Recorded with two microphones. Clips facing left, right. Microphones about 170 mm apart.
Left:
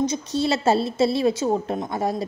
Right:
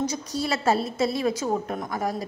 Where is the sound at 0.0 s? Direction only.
25° left (ahead or behind).